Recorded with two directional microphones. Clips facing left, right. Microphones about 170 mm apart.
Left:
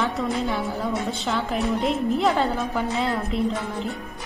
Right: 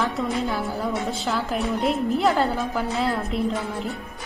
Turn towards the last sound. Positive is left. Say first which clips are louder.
# even
turn(degrees=0)  # may be behind; listen again after turning